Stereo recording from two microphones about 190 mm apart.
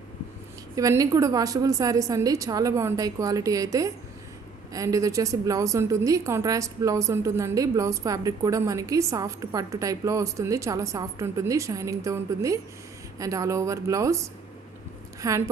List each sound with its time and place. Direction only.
0.7 s a woman's voice: 20° right (ahead or behind)
15.2 s a woman's voice: 15° right (ahead or behind)